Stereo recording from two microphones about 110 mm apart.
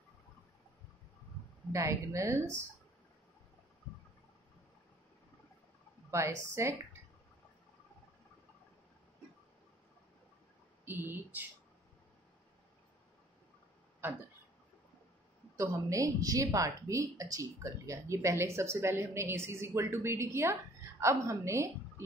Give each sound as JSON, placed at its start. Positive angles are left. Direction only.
{"t": 1.7, "sound": "speech", "side_deg": -25}
{"t": 6.1, "sound": "speech", "side_deg": -25}
{"t": 10.9, "sound": "speech", "side_deg": -20}
{"t": 15.5, "sound": "a woman's voice", "side_deg": -30}